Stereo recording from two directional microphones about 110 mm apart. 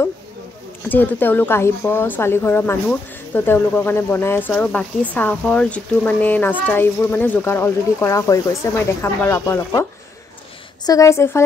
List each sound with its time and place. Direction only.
0.8 s speech: 15° left (ahead or behind)
10.9 s speech: 30° left (ahead or behind)